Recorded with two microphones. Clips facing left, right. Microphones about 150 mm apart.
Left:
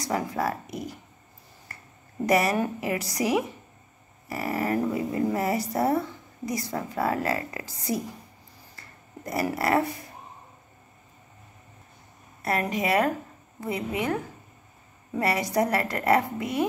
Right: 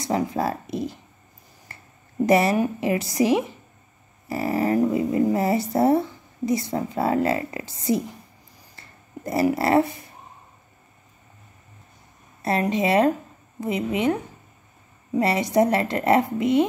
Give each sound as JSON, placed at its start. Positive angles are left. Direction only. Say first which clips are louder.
{"t": 0.0, "sound": "speech", "louder": "right 4 dB", "side_deg": -25}
{"t": 1.7, "sound": "a sound", "louder": "right 1 dB", "side_deg": -25}
{"t": 2.2, "sound": "speech", "louder": "right 4 dB", "side_deg": -25}
{"t": 8.7, "sound": "a sound", "louder": "right 5 dB", "side_deg": -25}
{"t": 12.4, "sound": "speech", "louder": "right 5 dB", "side_deg": -25}
{"t": 15.1, "sound": "speech", "louder": "right 5 dB", "side_deg": -25}